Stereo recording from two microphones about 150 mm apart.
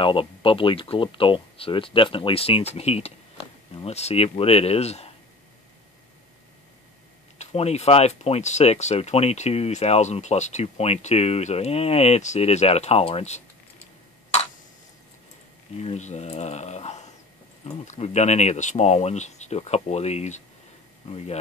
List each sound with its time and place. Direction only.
0.0 s speech: 35° left (ahead or behind)
7.3 s speech: 45° left (ahead or behind)
15.8 s speech: 45° left (ahead or behind)